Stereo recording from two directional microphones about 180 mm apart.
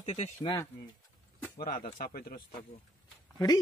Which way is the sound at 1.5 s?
55° left (ahead or behind).